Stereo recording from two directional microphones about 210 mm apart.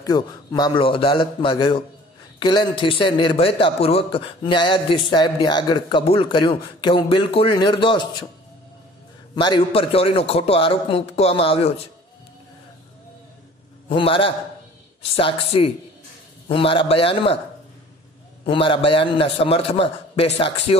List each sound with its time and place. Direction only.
0.0 s a man's voice: 20° left (ahead or behind)
9.3 s a man's voice: 20° left (ahead or behind)
13.8 s a man's voice: 25° left (ahead or behind)
18.4 s a man's voice: 25° left (ahead or behind)